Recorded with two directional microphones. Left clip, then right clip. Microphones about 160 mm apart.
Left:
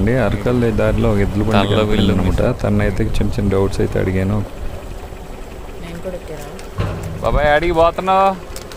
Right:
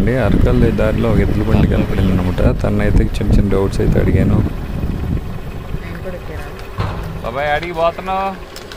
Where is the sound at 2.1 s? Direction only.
Centre (ahead or behind).